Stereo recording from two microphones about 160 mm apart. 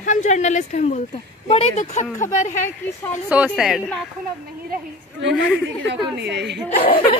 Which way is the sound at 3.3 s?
5° right (ahead or behind).